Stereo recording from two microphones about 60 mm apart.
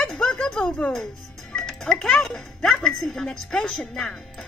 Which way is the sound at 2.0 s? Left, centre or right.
Centre.